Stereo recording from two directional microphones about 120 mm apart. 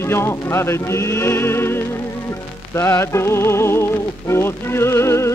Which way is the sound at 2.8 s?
20° left (ahead or behind).